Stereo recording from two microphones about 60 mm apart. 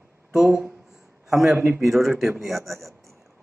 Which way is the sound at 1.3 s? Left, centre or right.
Centre.